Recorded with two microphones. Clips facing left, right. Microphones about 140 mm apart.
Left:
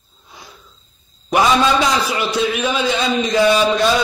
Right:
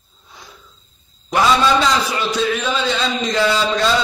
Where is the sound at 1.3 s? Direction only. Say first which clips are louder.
Left 1 dB; 15° left (ahead or behind).